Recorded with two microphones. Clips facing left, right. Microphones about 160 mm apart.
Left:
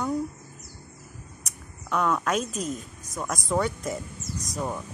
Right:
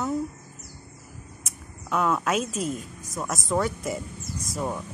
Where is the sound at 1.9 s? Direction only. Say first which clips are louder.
Right 1 dB; 5° right (ahead or behind).